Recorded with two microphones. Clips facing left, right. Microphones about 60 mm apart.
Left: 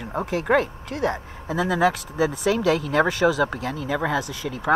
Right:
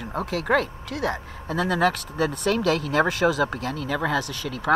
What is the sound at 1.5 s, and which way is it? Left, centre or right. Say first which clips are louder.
Speech: left 1 dB; centre.